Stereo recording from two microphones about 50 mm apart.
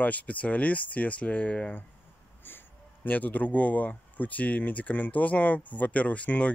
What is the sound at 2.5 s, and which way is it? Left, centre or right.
Speech, left.